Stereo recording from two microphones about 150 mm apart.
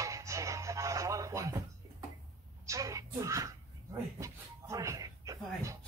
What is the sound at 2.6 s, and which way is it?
Music, 20° right (ahead or behind).